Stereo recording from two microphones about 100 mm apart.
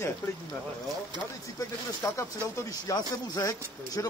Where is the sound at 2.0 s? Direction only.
30° left (ahead or behind).